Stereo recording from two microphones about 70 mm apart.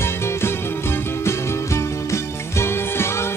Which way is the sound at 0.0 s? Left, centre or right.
Left.